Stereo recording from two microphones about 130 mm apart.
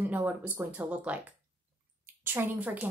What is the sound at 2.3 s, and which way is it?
Speech, 10° right (ahead or behind).